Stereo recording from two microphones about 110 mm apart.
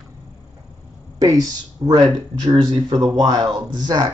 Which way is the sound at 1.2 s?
30° right (ahead or behind).